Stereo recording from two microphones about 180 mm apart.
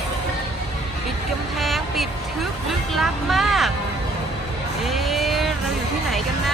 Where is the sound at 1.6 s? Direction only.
Centre (ahead or behind).